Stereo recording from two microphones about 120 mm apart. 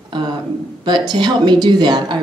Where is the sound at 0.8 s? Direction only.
40° right (ahead or behind).